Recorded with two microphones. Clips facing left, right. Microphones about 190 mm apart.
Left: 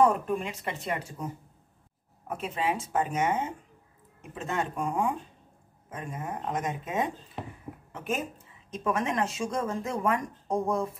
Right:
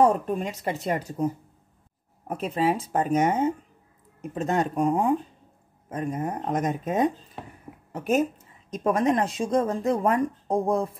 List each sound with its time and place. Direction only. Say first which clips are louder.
0.0 s speech: right 3 dB; 40° right (ahead or behind)